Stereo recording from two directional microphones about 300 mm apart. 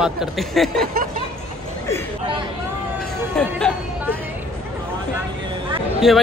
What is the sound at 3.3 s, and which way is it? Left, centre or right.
Music, centre.